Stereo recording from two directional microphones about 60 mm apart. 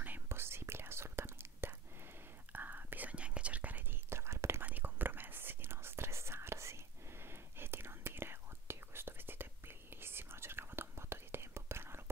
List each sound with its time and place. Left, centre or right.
0.3 s whispering: right
4.1 s whispering: right
4.6 s whispering: right